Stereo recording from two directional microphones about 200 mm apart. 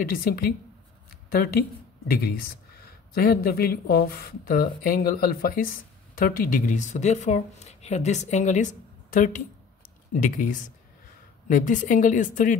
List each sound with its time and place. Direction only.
0.0 s speech: 50° left (ahead or behind)